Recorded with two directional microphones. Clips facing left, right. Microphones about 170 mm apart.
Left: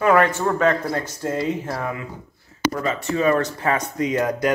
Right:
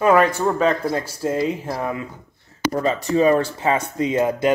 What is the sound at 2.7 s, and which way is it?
Speech, 35° right (ahead or behind).